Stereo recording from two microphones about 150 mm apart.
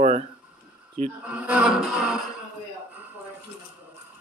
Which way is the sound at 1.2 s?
10° right (ahead or behind).